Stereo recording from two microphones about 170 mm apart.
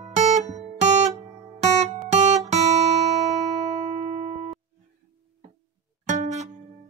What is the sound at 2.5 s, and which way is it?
Guitar, 40° right (ahead or behind).